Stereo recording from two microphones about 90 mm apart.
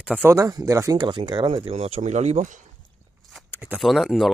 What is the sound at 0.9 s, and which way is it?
Speech, 55° right (ahead or behind).